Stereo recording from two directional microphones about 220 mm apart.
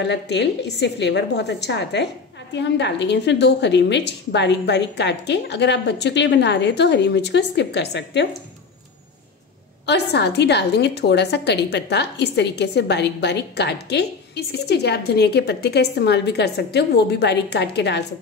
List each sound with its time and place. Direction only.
0.0 s a woman's voice: 50° left (ahead or behind)
9.8 s a woman's voice: 50° left (ahead or behind)